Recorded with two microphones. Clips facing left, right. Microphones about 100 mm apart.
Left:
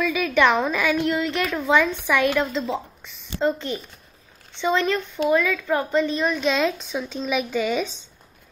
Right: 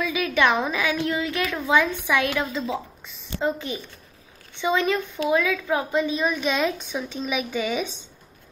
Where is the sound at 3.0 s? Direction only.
10° right (ahead or behind).